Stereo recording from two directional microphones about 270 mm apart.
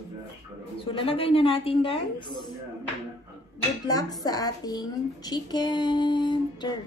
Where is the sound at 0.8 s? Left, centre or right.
Left.